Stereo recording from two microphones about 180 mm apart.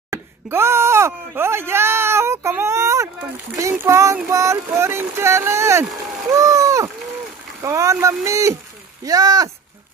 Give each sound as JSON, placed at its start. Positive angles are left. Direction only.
{"t": 0.1, "sound": "speech", "side_deg": -15}